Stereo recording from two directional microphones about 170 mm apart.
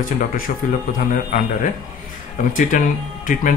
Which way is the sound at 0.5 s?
55° left (ahead or behind).